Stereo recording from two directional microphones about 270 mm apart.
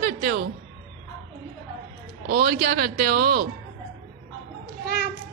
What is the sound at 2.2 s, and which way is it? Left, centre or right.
A woman's voice, right.